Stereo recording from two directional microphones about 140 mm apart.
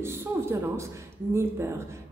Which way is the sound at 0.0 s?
15° right (ahead or behind).